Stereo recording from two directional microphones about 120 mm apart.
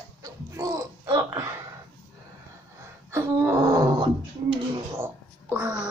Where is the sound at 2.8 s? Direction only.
25° right (ahead or behind).